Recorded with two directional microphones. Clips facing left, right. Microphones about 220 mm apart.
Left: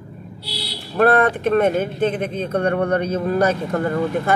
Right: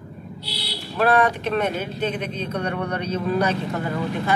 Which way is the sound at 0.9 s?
50° left (ahead or behind).